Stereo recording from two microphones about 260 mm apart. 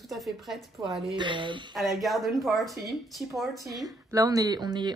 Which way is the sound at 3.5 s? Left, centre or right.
Centre.